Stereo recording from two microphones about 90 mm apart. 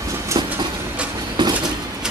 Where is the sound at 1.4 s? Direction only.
55° right (ahead or behind).